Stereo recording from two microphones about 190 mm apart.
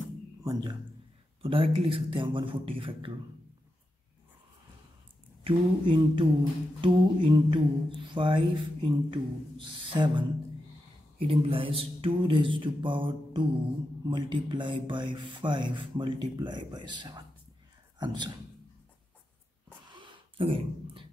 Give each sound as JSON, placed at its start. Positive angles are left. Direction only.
{"t": 0.4, "sound": "speech", "side_deg": -20}
{"t": 5.4, "sound": "speech", "side_deg": -25}
{"t": 19.9, "sound": "a sound", "side_deg": -25}